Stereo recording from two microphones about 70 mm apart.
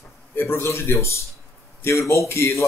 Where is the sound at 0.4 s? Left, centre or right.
Left.